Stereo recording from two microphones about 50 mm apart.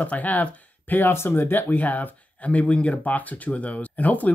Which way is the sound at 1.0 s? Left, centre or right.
Left.